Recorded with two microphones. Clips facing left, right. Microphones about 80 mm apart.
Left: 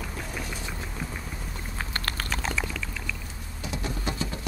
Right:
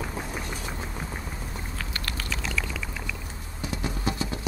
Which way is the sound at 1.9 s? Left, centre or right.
Left.